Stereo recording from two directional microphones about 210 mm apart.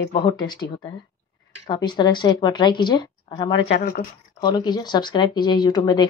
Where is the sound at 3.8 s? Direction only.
45° left (ahead or behind).